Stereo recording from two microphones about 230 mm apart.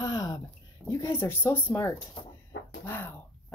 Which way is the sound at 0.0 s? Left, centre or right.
Centre.